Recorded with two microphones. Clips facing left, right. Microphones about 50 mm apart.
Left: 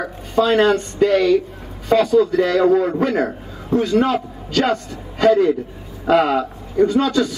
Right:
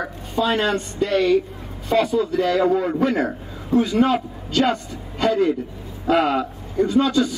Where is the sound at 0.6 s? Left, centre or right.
Left.